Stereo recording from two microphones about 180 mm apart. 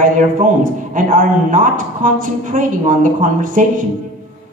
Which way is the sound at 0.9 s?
50° right (ahead or behind).